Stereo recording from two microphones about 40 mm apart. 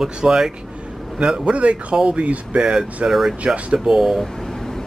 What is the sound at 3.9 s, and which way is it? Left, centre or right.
Speech, centre.